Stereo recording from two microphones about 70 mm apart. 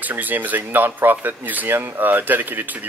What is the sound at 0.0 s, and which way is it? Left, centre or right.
Speech, right.